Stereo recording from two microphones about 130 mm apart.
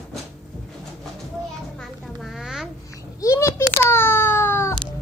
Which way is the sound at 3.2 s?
25° left (ahead or behind).